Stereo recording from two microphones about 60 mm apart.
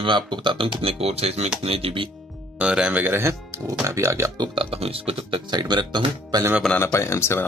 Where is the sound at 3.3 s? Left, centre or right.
Right.